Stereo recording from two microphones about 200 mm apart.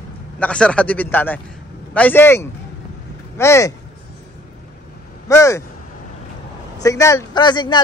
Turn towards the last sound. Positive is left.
turn(degrees=20)  # may be behind; listen again after turning